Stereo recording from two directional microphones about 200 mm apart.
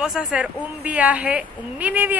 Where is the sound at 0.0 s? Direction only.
Centre (ahead or behind).